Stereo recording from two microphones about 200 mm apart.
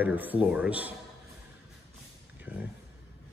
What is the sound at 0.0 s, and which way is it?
Speech, 10° right (ahead or behind).